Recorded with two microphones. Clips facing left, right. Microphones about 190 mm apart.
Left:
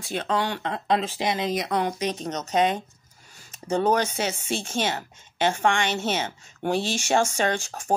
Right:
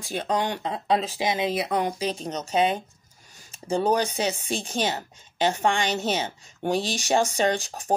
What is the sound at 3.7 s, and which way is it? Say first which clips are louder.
Speech: even; 10° right (ahead or behind).